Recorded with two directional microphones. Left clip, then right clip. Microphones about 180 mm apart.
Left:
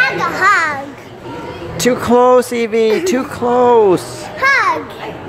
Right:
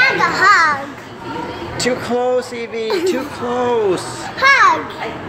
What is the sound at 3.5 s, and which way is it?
Speech, 30° left (ahead or behind).